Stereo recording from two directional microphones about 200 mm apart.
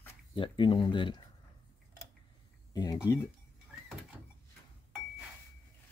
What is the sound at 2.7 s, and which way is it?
Speech, 20° left (ahead or behind).